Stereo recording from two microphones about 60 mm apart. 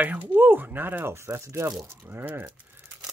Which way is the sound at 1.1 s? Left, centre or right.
Right.